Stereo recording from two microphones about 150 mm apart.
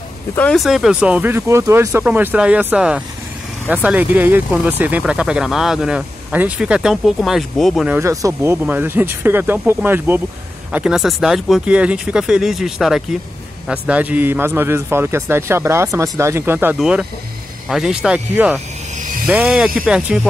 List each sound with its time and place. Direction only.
0.4 s speech: 5° left (ahead or behind)
7.9 s speech: 20° right (ahead or behind)